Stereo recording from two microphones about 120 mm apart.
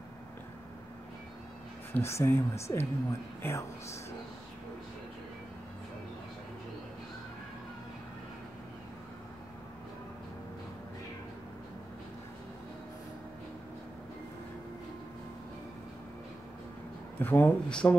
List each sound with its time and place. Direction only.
2.0 s a woman's voice: 20° left (ahead or behind)
17.2 s speech: 15° left (ahead or behind)